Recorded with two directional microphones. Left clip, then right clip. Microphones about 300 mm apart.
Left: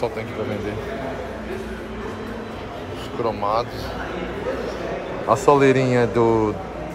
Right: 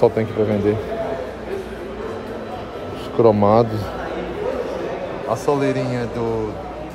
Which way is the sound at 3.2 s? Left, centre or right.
Right.